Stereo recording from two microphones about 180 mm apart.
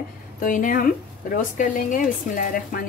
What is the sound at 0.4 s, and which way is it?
Speech, 50° left (ahead or behind).